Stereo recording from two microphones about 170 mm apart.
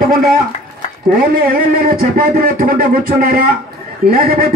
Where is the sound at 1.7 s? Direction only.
60° right (ahead or behind).